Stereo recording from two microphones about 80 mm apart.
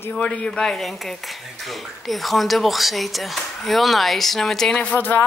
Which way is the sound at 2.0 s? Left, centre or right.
Centre.